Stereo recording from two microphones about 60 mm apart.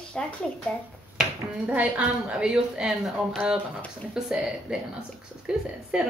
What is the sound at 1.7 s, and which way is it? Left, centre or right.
A woman's voice, right.